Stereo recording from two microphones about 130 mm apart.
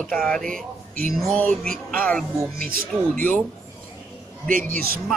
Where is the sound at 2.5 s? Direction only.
90° right.